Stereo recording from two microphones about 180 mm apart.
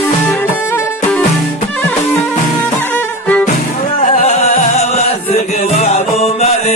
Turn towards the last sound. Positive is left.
turn(degrees=35)  # may be behind; listen again after turning